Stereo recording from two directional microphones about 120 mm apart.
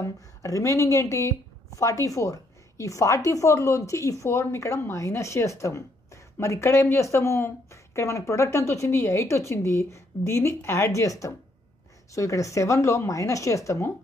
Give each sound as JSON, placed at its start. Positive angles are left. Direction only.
{"t": 0.0, "sound": "a woman's voice", "side_deg": 25}